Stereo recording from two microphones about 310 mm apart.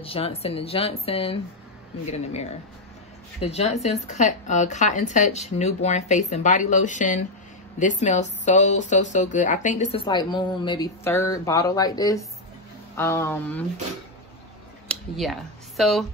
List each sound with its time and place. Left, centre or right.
0.0 s speech: centre
3.4 s speech: left
14.9 s speech: centre